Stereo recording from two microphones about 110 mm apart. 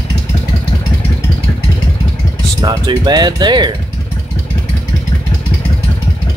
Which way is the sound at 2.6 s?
40° right (ahead or behind).